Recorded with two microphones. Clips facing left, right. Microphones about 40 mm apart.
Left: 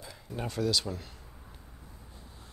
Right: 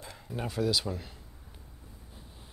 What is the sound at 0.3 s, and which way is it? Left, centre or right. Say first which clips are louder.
Speech: right 1 dB; centre.